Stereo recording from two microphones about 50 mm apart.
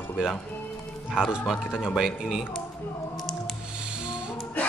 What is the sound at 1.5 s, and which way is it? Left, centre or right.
Speech, centre.